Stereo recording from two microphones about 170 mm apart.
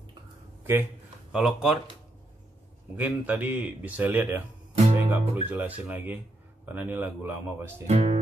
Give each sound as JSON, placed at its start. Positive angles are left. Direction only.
{"t": 1.3, "sound": "speech", "side_deg": 0}
{"t": 3.0, "sound": "speech", "side_deg": -10}
{"t": 7.8, "sound": "speech", "side_deg": -35}